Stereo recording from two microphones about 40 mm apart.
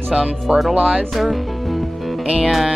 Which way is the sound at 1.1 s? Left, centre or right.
Centre.